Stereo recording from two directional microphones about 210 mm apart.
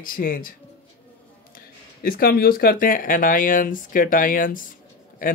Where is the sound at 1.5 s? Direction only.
45° left (ahead or behind).